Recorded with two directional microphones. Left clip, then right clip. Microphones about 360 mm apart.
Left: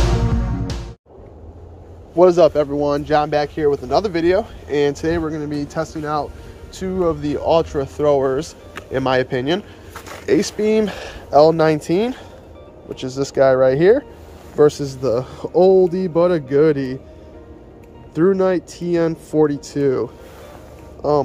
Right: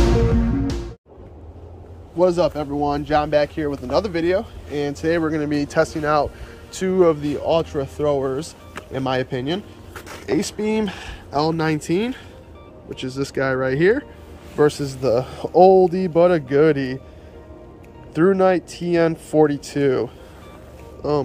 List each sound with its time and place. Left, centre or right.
0.0 s music: centre
2.1 s speech: centre
18.1 s speech: centre